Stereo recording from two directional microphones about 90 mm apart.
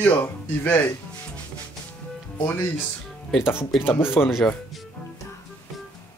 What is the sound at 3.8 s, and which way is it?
Speech, 25° left (ahead or behind).